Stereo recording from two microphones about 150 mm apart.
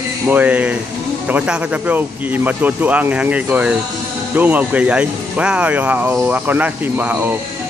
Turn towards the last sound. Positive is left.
turn(degrees=-10)  # may be behind; listen again after turning